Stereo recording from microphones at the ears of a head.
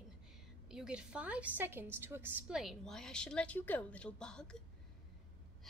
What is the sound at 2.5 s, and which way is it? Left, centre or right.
A woman's voice, centre.